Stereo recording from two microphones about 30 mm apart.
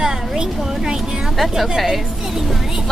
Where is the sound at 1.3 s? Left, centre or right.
Centre.